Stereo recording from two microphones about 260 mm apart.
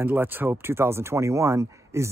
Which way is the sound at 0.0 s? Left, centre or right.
Centre.